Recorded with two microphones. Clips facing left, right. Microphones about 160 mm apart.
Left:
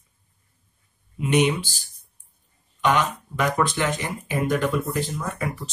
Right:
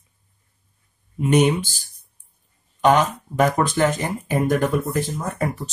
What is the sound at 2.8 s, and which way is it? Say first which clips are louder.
Speech: right 5 dB; 40° right (ahead or behind).